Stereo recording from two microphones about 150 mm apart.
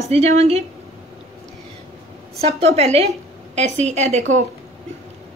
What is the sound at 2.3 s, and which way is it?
A woman's voice, 45° right (ahead or behind).